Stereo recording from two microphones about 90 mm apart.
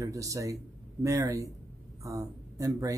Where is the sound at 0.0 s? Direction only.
40° right (ahead or behind).